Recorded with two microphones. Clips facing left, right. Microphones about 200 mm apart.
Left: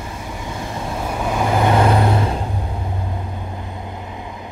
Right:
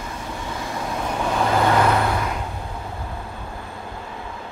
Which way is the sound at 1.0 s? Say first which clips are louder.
Left 1 dB; 10° left (ahead or behind).